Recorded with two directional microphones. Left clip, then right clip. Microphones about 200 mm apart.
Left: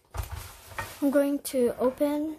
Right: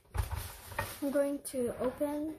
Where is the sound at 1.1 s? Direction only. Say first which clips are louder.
Left 6 dB; 40° left (ahead or behind).